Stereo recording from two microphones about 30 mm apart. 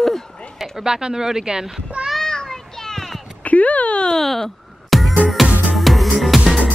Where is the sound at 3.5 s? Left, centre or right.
Left.